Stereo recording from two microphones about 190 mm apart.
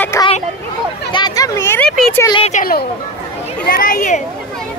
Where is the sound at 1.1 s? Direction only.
20° left (ahead or behind).